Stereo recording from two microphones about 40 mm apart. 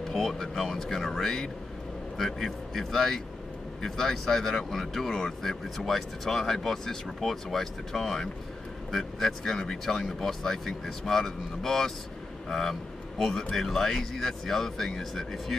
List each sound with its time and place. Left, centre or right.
0.0 s speech: centre